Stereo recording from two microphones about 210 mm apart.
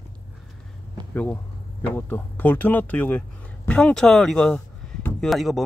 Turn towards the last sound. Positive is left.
turn(degrees=0)  # may be behind; listen again after turning